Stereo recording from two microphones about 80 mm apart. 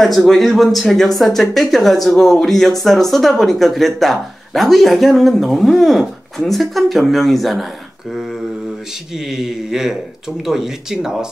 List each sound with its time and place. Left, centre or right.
0.0 s speech: centre
9.3 s speech: centre